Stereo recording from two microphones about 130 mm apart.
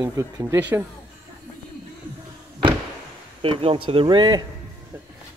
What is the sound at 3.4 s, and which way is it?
Speech, 45° right (ahead or behind).